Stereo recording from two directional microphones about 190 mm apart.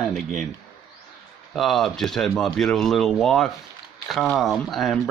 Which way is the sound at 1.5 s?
Centre (ahead or behind).